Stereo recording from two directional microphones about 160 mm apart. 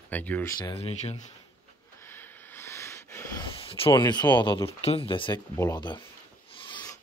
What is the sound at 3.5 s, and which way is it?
Speech, 35° left (ahead or behind).